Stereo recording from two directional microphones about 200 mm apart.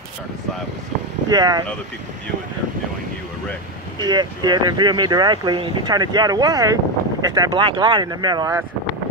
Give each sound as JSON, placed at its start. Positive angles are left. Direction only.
{"t": 1.3, "sound": "speech", "side_deg": -20}
{"t": 4.0, "sound": "speech", "side_deg": -20}